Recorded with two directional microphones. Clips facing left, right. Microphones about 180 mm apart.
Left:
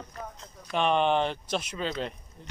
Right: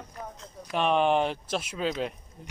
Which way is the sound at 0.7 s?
5° right (ahead or behind).